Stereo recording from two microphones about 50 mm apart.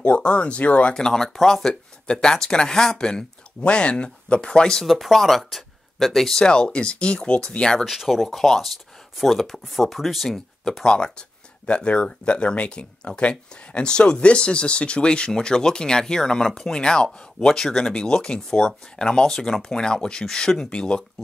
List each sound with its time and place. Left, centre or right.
0.0 s speech: left
0.9 s speech: centre
4.8 s speech: centre
6.4 s speech: centre
7.8 s speech: centre